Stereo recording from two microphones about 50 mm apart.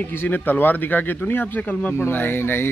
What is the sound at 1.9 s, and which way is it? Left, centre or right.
Speech, left.